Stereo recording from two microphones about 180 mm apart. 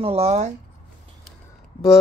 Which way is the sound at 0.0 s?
35° right (ahead or behind).